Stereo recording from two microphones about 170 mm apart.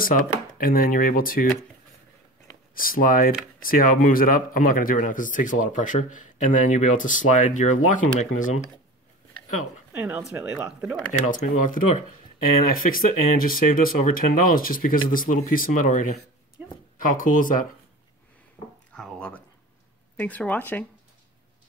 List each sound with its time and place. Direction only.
0.0 s speech: 55° left (ahead or behind)
2.7 s speech: 55° left (ahead or behind)
9.9 s speech: 10° right (ahead or behind)
11.2 s speech: 50° left (ahead or behind)
16.6 s a sound: 10° right (ahead or behind)
17.1 s speech: 50° left (ahead or behind)
18.9 s speech: 5° left (ahead or behind)